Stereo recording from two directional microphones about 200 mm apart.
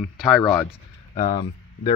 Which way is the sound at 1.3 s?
20° left (ahead or behind).